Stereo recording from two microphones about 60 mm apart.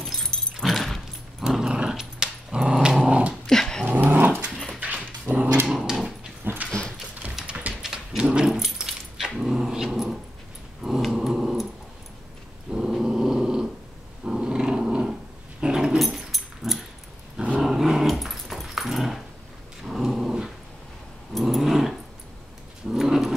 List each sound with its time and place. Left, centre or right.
0.0 s a sound: centre
0.7 s keys jangling: centre
1.5 s dog: centre
3.4 s dog: centre
3.8 s dog: right
5.7 s dog: centre
6.4 s a sound: right
7.3 s dog: centre
12.7 s dog: centre
19.8 s a sound: centre
21.3 s dog: centre